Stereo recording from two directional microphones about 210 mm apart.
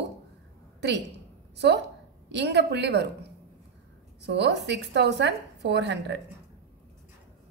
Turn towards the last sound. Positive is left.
turn(degrees=-55)  # may be behind; listen again after turning